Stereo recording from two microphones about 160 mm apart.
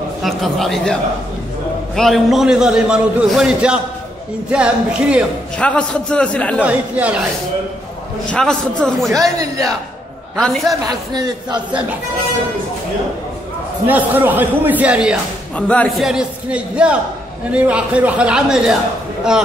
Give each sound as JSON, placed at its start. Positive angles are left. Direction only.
{"t": 0.2, "sound": "a man's voice", "side_deg": 0}
{"t": 2.0, "sound": "a man's voice", "side_deg": 0}
{"t": 5.6, "sound": "a man's voice", "side_deg": 5}
{"t": 6.6, "sound": "a man's voice", "side_deg": -10}
{"t": 8.3, "sound": "a man's voice", "side_deg": 5}
{"t": 10.3, "sound": "a man's voice", "side_deg": 5}
{"t": 11.1, "sound": "a man's voice", "side_deg": -25}
{"t": 13.8, "sound": "a man's voice", "side_deg": -10}
{"t": 15.5, "sound": "a man's voice", "side_deg": 10}